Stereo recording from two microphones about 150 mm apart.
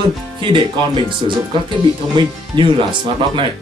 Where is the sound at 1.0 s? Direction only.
35° right (ahead or behind).